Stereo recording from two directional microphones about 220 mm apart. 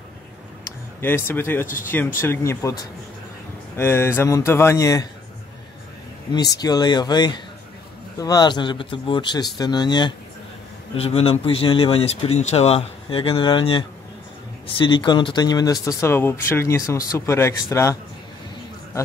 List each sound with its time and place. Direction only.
1.0 s speech: 10° left (ahead or behind)
3.7 s speech: 10° left (ahead or behind)
6.3 s speech: 15° left (ahead or behind)